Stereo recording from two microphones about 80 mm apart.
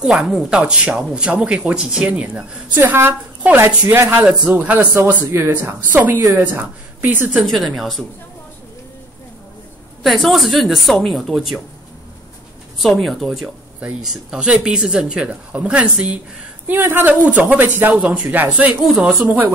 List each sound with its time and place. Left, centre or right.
0.0 s speech: centre
2.7 s speech: right
7.3 s speech: centre
10.0 s speech: centre
12.7 s speech: centre
16.6 s speech: right
18.7 s speech: centre
19.1 s speech: right